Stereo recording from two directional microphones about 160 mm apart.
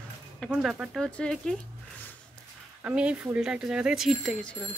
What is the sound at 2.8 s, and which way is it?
Speech, 10° right (ahead or behind).